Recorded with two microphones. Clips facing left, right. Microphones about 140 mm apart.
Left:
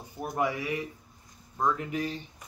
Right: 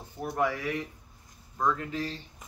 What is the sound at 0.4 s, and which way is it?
Speech, 15° left (ahead or behind).